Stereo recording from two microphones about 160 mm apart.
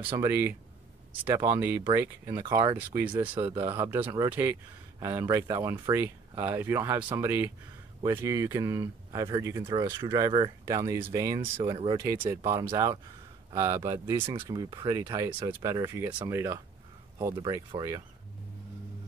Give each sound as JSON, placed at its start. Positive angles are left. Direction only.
{"t": 0.2, "sound": "speech", "side_deg": -15}
{"t": 2.4, "sound": "speech", "side_deg": -30}
{"t": 3.2, "sound": "speech", "side_deg": -10}
{"t": 9.7, "sound": "speech", "side_deg": -30}
{"t": 11.5, "sound": "speech", "side_deg": -30}